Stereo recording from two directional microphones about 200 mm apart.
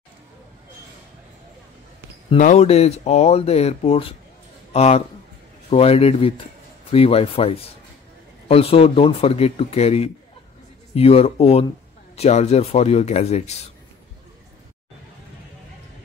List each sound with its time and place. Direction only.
2.2 s speech: 35° left (ahead or behind)